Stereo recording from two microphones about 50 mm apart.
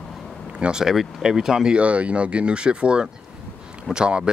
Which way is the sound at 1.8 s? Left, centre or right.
Right.